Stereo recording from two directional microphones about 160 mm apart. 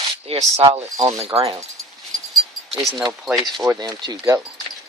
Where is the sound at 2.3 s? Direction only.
Centre (ahead or behind).